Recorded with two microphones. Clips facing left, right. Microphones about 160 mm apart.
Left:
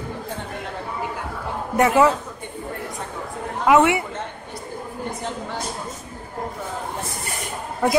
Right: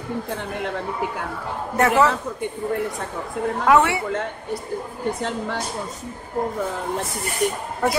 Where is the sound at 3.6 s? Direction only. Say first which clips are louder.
Left 2 dB; 20° left (ahead or behind).